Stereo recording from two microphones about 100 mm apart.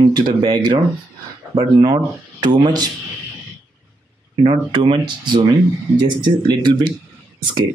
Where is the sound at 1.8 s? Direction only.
45° right (ahead or behind).